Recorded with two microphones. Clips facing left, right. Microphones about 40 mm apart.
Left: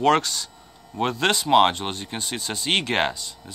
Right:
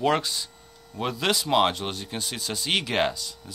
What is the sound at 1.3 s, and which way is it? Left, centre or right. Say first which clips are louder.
Speech: left 5 dB; centre.